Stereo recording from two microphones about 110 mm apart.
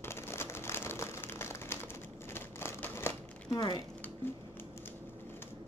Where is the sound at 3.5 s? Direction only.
45° left (ahead or behind).